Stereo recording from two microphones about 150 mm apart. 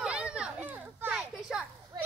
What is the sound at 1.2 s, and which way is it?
Children playing, 5° right (ahead or behind).